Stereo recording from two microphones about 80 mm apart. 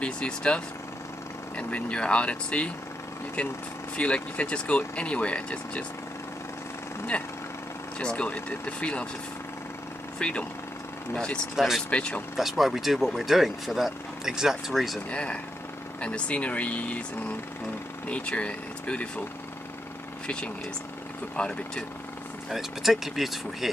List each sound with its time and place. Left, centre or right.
0.0 s speech: centre
1.6 s speech: centre
3.9 s speech: centre
8.0 s speech: centre
10.1 s speech: centre
11.5 s speech: centre
11.9 s speech: centre
12.4 s speech: centre
15.0 s speech: centre
18.0 s speech: centre
20.2 s speech: centre
22.5 s speech: centre